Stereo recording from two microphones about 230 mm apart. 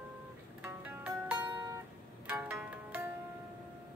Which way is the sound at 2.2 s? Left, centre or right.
Centre.